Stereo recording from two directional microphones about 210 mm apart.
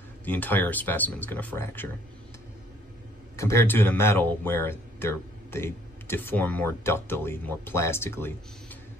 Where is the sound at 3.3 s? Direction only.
15° left (ahead or behind).